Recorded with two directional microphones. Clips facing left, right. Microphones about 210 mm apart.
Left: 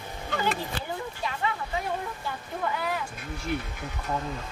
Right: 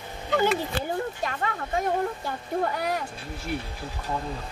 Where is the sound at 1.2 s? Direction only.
50° right (ahead or behind).